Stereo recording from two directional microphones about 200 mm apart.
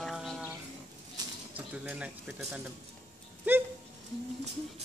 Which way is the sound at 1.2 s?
20° right (ahead or behind).